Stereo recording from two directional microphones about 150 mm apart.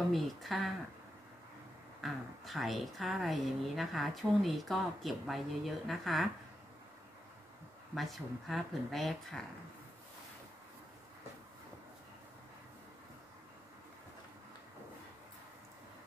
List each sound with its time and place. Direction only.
0.1 s speech: centre (ahead or behind)
2.0 s speech: centre (ahead or behind)
7.9 s speech: centre (ahead or behind)